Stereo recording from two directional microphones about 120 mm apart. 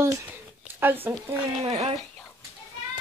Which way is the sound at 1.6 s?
60° right (ahead or behind).